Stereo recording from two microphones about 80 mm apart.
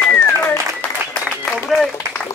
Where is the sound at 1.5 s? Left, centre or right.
Centre.